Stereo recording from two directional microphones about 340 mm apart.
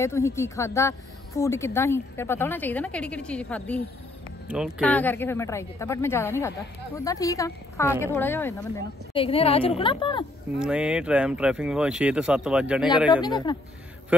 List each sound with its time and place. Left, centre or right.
0.0 s a woman's voice: centre
10.6 s speech: centre
13.1 s a woman's voice: centre